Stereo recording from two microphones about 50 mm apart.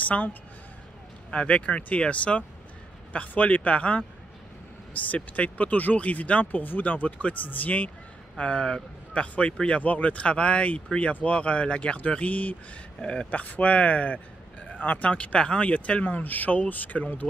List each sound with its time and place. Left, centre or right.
0.0 s speech: left
8.4 s speech: centre
13.0 s speech: centre